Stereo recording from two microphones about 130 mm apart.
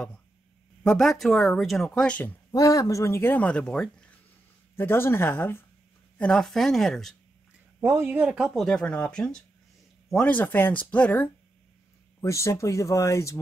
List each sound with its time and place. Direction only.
0.8 s speech: centre (ahead or behind)
2.5 s speech: 30° left (ahead or behind); by 4.1 s 5° left (ahead or behind)
4.7 s speech: 15° left (ahead or behind)
7.8 s speech: 20° right (ahead or behind)
8.5 s speech: 5° left (ahead or behind)
12.2 s speech: 25° left (ahead or behind)